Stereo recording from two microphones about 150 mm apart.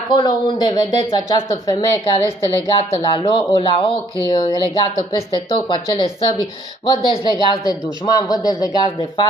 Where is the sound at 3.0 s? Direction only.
35° left (ahead or behind).